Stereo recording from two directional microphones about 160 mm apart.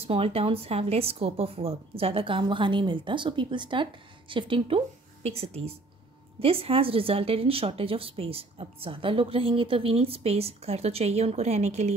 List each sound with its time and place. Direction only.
0.0 s speech: 40° right (ahead or behind)